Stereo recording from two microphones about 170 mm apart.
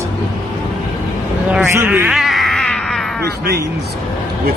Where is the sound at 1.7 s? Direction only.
10° right (ahead or behind).